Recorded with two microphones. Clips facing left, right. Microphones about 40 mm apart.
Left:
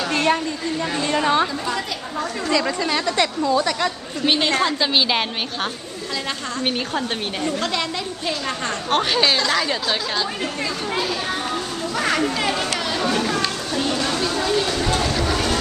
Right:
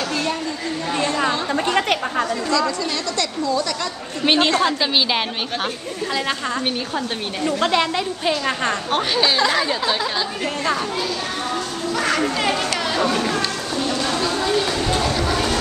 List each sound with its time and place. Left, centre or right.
0.1 s a sound: left
1.7 s chatter: right
2.5 s speech: left
4.3 s a woman's voice: right
4.6 s a woman's voice: centre
7.6 s a woman's voice: centre
8.9 s a woman's voice: centre
11.9 s a child's voice: centre
12.2 s speech: centre
12.9 s a sound: centre